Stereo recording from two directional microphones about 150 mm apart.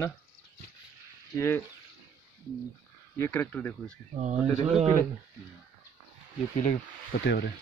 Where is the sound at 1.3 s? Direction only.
15° left (ahead or behind).